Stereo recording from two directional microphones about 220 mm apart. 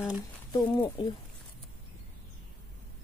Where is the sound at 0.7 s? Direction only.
20° left (ahead or behind).